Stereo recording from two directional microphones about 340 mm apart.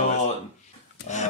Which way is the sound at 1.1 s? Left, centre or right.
Left.